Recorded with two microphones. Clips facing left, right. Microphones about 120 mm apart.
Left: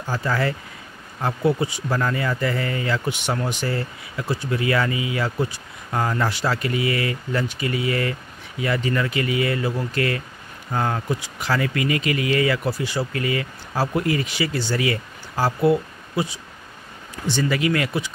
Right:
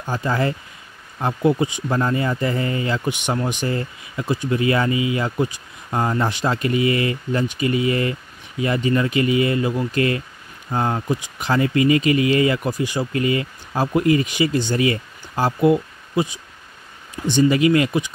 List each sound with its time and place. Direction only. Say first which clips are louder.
0.0 s speech: right 2 dB; 20° right (ahead or behind)
13.1 s speech: right 4 dB; 25° right (ahead or behind)
17.3 s speech: right 6 dB; 20° right (ahead or behind)